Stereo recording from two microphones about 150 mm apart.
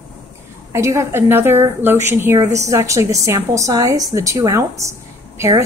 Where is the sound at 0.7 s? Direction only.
20° right (ahead or behind).